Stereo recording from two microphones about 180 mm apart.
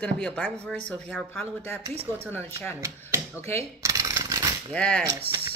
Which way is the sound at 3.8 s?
15° right (ahead or behind).